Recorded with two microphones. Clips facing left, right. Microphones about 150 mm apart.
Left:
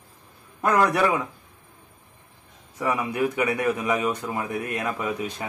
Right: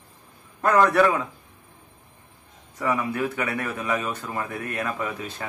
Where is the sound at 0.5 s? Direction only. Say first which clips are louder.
Right 2 dB; 10° left (ahead or behind).